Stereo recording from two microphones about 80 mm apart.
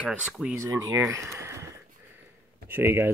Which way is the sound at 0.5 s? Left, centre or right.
Right.